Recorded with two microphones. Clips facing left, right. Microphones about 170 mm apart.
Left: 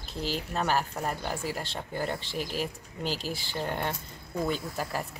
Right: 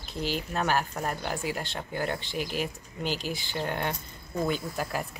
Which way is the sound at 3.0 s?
30° left (ahead or behind).